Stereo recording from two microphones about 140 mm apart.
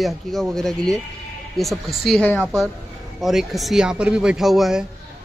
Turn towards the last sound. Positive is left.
turn(degrees=0)  # may be behind; listen again after turning